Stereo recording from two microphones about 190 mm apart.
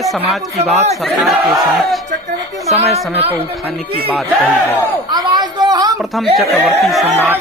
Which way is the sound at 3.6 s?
Centre (ahead or behind).